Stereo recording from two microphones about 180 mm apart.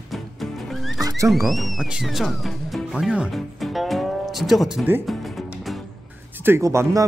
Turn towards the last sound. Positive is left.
turn(degrees=-15)  # may be behind; listen again after turning